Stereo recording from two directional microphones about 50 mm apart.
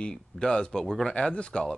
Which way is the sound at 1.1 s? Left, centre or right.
Left.